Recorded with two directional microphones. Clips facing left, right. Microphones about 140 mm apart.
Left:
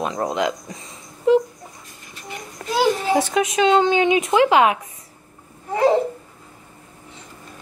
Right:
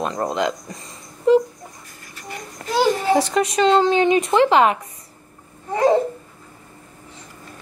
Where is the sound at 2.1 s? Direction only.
20° left (ahead or behind).